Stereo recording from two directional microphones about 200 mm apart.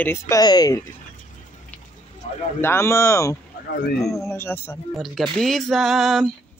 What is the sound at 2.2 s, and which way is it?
Speech, 30° left (ahead or behind).